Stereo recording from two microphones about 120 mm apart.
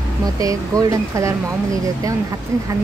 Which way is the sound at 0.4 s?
30° right (ahead or behind).